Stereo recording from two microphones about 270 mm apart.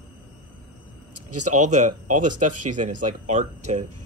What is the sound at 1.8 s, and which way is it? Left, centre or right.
Speech, right.